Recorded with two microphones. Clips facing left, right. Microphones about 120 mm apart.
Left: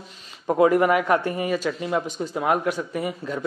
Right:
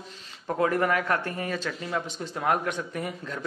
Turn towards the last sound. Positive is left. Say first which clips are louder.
# left 6 dB
turn(degrees=5)  # may be behind; listen again after turning